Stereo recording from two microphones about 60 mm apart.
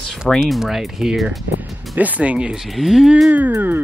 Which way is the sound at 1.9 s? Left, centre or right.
Right.